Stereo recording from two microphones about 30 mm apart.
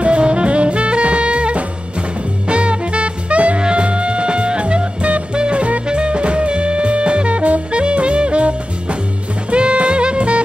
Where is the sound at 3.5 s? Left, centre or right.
Right.